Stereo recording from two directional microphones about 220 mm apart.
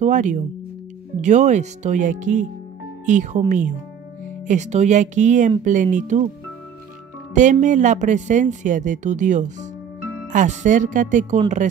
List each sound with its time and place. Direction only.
0.0 s speech: 35° right (ahead or behind)
7.3 s speech: 35° right (ahead or behind)